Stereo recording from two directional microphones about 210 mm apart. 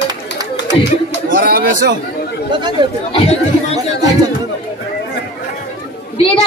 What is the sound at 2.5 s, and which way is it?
Speech, 20° right (ahead or behind).